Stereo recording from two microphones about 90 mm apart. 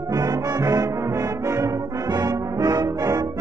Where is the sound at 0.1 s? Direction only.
45° right (ahead or behind).